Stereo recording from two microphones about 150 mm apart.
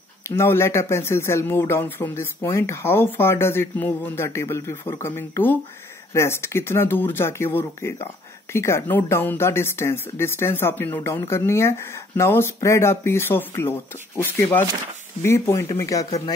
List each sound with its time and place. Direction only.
0.4 s speech: 15° left (ahead or behind)